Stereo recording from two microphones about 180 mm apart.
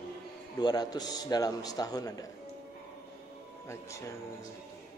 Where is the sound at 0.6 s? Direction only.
20° left (ahead or behind).